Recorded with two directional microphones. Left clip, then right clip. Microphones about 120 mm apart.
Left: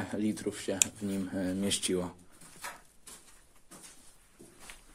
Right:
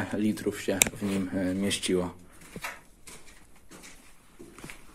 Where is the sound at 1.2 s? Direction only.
20° left (ahead or behind).